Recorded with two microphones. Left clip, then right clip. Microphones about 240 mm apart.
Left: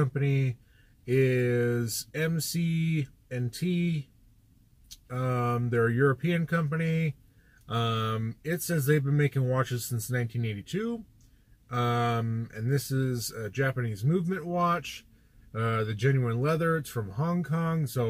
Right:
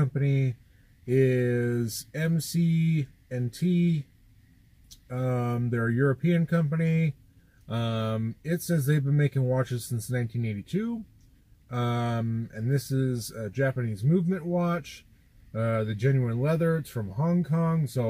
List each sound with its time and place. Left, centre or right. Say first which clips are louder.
0.0 s speech: even; centre
5.0 s speech: even; centre